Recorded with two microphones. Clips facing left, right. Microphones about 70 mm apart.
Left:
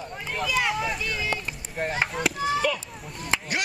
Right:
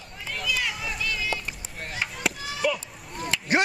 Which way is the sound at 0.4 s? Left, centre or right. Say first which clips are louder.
Left 5 dB; left.